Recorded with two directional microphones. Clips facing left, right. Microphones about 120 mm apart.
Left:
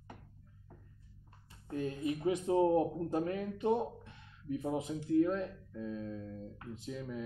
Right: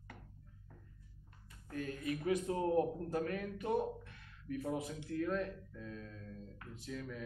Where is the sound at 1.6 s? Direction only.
25° left (ahead or behind).